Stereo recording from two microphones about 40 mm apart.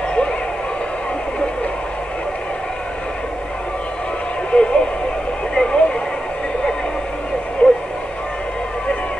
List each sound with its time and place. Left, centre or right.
4.5 s radio: left
5.5 s vehicle: left
7.6 s radio: left